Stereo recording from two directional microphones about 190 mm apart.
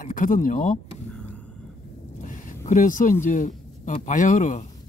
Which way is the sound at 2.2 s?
45° left (ahead or behind).